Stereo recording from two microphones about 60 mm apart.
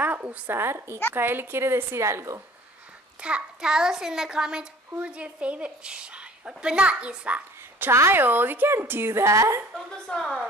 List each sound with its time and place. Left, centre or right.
0.0 s a woman's voice: right
0.6 s a woman's voice: right
3.2 s a child's voice: centre
7.9 s a woman's voice: right
9.2 s a woman's voice: right
9.8 s a woman's voice: centre